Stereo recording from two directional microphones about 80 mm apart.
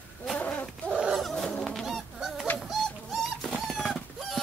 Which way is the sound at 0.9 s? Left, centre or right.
Centre.